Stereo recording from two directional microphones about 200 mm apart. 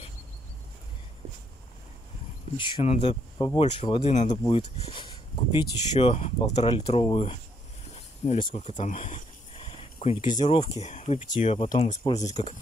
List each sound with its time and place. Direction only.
2.5 s speech: 25° left (ahead or behind)
3.3 s speech: 20° left (ahead or behind)
8.5 s a sound: 35° left (ahead or behind)
10.4 s speech: 30° left (ahead or behind)